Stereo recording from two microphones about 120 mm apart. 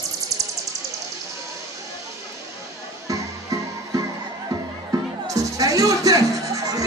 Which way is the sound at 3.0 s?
25° right (ahead or behind).